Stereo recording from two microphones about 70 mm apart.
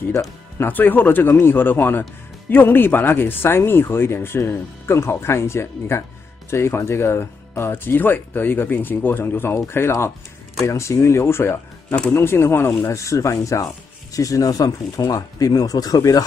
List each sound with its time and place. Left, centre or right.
0.6 s speech: left